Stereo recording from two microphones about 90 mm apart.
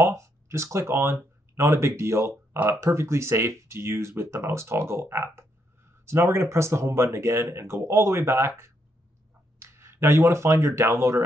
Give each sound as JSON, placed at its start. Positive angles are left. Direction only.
{"t": 0.0, "sound": "speech", "side_deg": -30}